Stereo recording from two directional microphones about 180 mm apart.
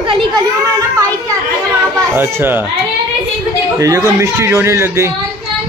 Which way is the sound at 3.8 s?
15° right (ahead or behind).